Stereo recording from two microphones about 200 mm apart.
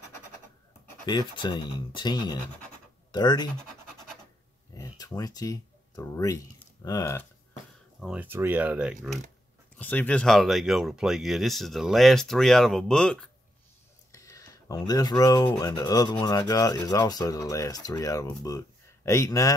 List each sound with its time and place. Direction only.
1.0 s speech: 25° left (ahead or behind)
4.7 s speech: 20° left (ahead or behind)
8.0 s speech: 5° right (ahead or behind)
9.8 s speech: 5° left (ahead or behind)
14.1 s speech: 15° left (ahead or behind)